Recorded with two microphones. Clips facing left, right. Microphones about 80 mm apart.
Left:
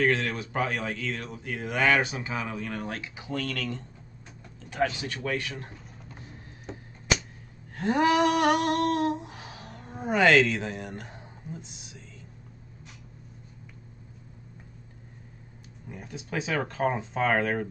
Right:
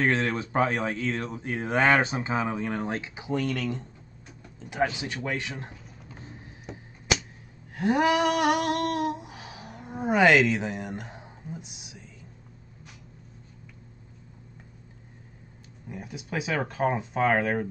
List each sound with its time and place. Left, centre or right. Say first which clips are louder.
0.0 s speech: right 1 dB; right
7.7 s a sound: even; centre
15.9 s speech: right 1 dB; centre